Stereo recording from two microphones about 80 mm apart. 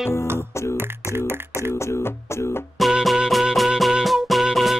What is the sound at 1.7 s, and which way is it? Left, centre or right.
Music, left.